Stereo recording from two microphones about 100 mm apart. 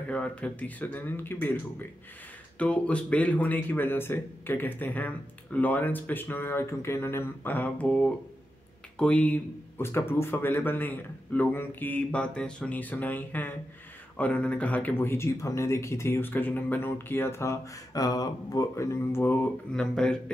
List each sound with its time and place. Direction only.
0.1 s a man's voice: 15° left (ahead or behind)
9.8 s a man's voice: 25° left (ahead or behind)
19.7 s speech: 5° left (ahead or behind)